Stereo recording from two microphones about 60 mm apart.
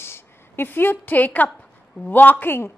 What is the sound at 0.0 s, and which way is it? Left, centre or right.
A woman's voice, left.